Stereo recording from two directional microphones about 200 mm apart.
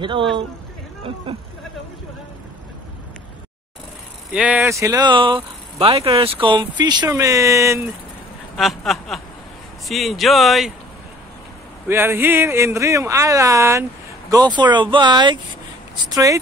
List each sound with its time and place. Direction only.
0.0 s speech: 25° right (ahead or behind)
4.3 s speech: 5° right (ahead or behind)
8.5 s speech: centre (ahead or behind)
11.9 s speech: 10° right (ahead or behind)